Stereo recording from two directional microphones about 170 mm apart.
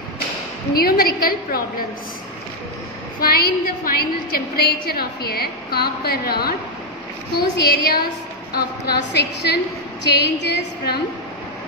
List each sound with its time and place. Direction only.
0.7 s a woman's voice: 65° left (ahead or behind)
3.2 s a woman's voice: 60° left (ahead or behind); by 11.0 s 80° left